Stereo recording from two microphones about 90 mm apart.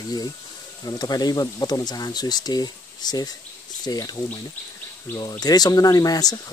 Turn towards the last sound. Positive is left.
turn(degrees=45)  # may be behind; listen again after turning